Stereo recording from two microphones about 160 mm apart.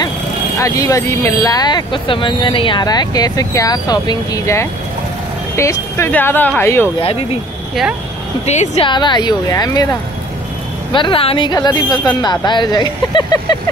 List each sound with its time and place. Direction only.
0.6 s speech: 20° left (ahead or behind)
8.5 s a woman's voice: 45° left (ahead or behind)
8.8 s speech: 30° left (ahead or behind)